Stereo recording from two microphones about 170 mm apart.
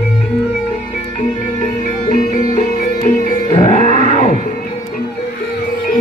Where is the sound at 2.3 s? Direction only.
50° left (ahead or behind).